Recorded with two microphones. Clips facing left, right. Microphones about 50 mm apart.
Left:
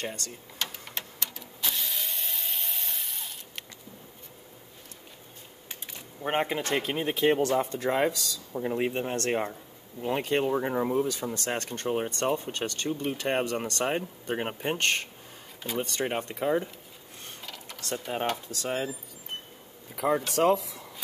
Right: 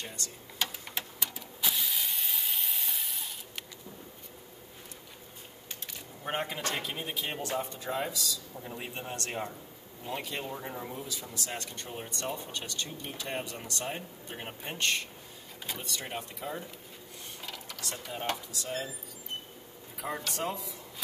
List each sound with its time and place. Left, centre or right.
0.0 s speech: left
0.6 s a sound: centre
6.2 s speech: left
7.5 s speech: left
8.5 s speech: left
18.5 s speech: left
20.0 s speech: left